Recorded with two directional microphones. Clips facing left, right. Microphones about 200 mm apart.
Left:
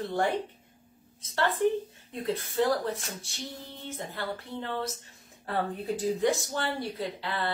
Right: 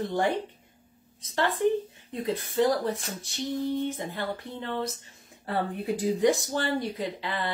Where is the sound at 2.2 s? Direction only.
15° right (ahead or behind).